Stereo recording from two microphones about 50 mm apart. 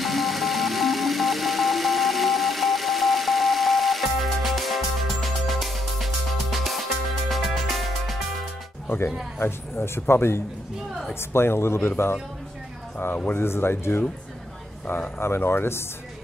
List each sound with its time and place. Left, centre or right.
0.0 s music: centre
8.8 s speech: left
13.3 s speech: left
15.1 s speech: left